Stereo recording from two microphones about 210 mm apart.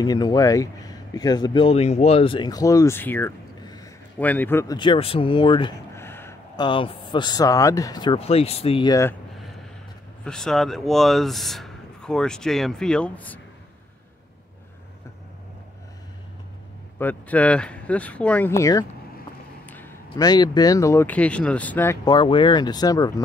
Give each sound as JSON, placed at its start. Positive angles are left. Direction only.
{"t": 0.0, "sound": "speech", "side_deg": 20}
{"t": 4.7, "sound": "speech", "side_deg": 25}
{"t": 5.9, "sound": "speech", "side_deg": 10}
{"t": 10.2, "sound": "speech", "side_deg": 5}
{"t": 17.0, "sound": "speech", "side_deg": 10}
{"t": 22.0, "sound": "speech", "side_deg": 20}